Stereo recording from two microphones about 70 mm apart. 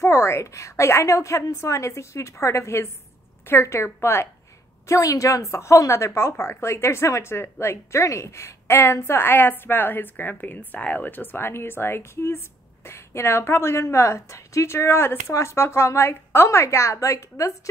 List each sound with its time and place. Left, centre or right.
0.0 s a woman's voice: left
4.8 s speech: left